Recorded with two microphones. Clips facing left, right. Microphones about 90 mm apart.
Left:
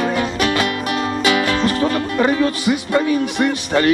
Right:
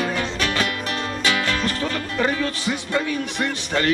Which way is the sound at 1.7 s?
15° left (ahead or behind).